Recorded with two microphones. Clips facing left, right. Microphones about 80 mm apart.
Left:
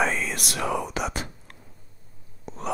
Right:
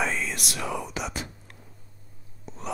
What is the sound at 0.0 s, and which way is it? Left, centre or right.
Whispering, left.